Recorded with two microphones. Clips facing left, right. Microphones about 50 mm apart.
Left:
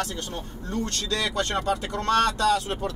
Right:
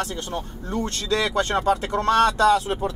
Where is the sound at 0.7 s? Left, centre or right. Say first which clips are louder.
Right 4 dB; right.